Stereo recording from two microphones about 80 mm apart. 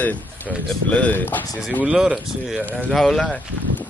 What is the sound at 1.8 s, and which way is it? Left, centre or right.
Speech, centre.